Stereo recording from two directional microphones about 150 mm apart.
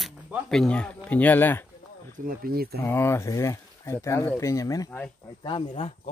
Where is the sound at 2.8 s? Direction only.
15° left (ahead or behind); by 6.1 s 40° left (ahead or behind).